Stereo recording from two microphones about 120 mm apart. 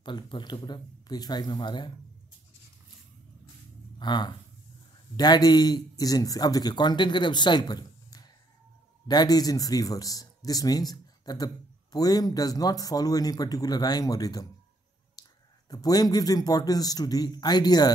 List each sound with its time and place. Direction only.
0.0 s speech: 40° left (ahead or behind)
4.0 s speech: 40° left (ahead or behind)
15.2 s a sound: 35° left (ahead or behind)
15.7 s speech: 35° left (ahead or behind)